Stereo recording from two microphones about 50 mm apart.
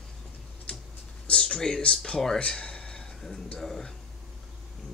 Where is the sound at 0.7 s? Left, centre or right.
Left.